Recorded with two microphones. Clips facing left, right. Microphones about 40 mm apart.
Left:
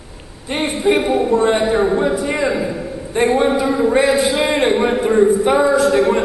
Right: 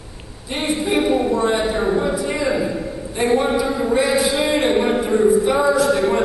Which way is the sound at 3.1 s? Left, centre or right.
Left.